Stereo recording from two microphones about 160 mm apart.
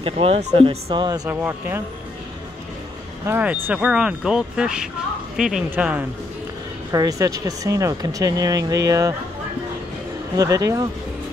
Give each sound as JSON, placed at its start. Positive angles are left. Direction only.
{"t": 0.0, "sound": "speech", "side_deg": -40}
{"t": 3.3, "sound": "speech", "side_deg": -10}
{"t": 6.9, "sound": "speech", "side_deg": -20}
{"t": 10.3, "sound": "speech", "side_deg": -20}